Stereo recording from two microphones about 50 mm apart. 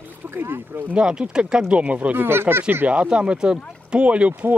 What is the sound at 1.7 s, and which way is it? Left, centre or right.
Speech, right.